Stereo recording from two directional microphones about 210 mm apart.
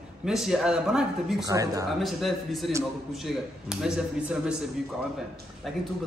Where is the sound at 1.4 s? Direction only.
15° right (ahead or behind).